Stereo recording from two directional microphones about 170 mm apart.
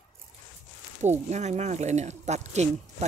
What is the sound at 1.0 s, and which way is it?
Speech, 40° right (ahead or behind).